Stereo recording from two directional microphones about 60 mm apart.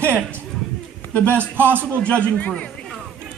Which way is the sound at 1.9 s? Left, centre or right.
Centre.